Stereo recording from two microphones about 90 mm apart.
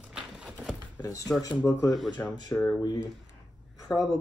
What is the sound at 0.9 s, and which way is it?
Speech, 40° left (ahead or behind).